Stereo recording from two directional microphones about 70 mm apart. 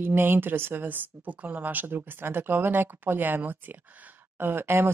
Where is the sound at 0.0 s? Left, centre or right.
Right.